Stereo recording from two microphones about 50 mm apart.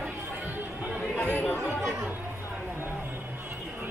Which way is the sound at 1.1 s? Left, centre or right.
Left.